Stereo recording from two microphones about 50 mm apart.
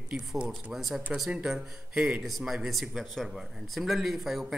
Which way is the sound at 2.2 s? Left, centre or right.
Centre.